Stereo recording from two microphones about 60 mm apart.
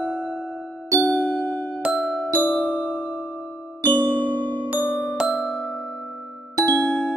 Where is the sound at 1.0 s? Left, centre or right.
Centre.